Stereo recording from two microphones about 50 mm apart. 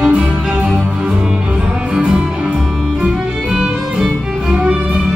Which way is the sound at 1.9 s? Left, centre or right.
Centre.